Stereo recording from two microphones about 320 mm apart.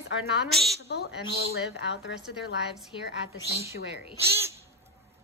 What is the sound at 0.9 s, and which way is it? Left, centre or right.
A woman's voice, left.